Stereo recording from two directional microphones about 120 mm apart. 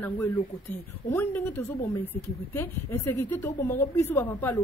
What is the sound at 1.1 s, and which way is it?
Speech, 15° left (ahead or behind).